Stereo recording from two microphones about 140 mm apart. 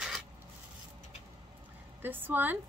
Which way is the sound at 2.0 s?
15° right (ahead or behind).